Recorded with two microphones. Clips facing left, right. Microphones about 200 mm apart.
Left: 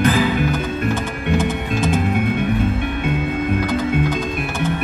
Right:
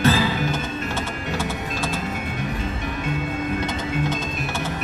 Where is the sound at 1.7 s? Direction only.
60° left (ahead or behind).